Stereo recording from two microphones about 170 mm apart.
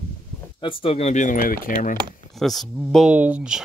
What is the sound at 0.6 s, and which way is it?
Speech, 30° left (ahead or behind).